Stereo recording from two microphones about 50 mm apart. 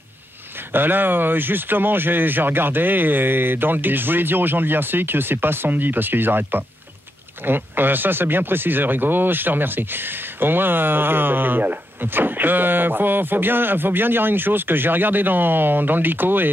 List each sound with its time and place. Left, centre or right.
0.7 s speech: right